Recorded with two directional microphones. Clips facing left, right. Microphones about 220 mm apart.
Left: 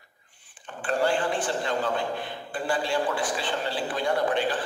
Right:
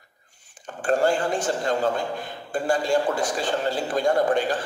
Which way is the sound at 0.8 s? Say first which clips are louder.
Right 4 dB; 45° right (ahead or behind).